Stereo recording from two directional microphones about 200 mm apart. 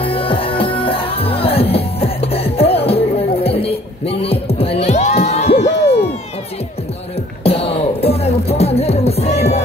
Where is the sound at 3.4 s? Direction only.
30° left (ahead or behind).